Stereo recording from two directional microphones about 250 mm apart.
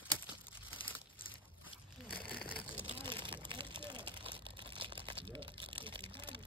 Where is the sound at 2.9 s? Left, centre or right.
Centre.